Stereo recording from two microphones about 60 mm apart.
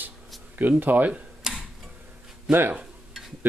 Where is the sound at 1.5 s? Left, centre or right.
Centre.